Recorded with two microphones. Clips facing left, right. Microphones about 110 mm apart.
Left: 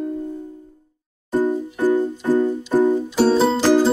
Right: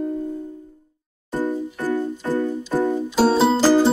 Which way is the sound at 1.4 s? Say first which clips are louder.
Left 4 dB; 15° left (ahead or behind).